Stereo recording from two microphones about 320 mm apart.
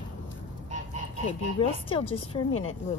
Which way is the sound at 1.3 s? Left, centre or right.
Centre.